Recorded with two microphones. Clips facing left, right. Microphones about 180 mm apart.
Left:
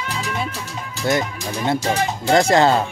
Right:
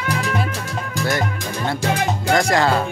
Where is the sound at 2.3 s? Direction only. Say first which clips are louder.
Left 4 dB; 25° left (ahead or behind).